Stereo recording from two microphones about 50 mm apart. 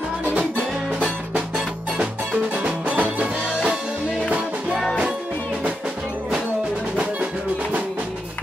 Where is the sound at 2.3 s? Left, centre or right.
Right.